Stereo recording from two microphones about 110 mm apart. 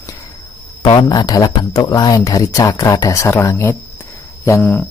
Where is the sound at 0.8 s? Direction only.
40° left (ahead or behind).